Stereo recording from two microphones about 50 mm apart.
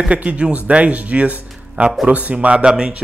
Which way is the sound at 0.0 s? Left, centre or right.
Right.